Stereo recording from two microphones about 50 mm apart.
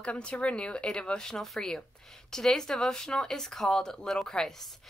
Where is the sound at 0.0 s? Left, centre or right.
Left.